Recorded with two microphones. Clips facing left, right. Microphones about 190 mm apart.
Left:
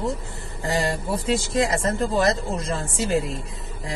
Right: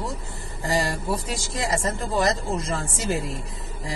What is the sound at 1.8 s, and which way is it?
Speech, centre (ahead or behind).